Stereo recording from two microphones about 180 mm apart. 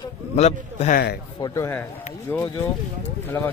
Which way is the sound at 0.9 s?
60° left (ahead or behind).